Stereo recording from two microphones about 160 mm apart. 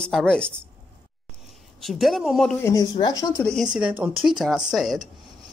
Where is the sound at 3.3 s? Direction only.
10° left (ahead or behind).